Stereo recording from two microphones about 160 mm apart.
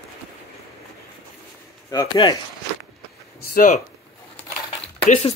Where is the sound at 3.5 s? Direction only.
60° left (ahead or behind).